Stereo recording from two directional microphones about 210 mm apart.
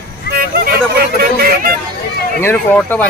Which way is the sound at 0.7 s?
45° right (ahead or behind).